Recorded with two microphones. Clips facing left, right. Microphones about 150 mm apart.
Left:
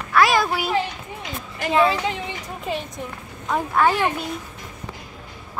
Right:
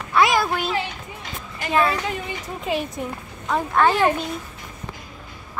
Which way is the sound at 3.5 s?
10° left (ahead or behind).